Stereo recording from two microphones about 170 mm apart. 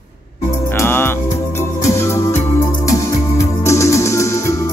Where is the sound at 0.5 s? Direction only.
15° left (ahead or behind).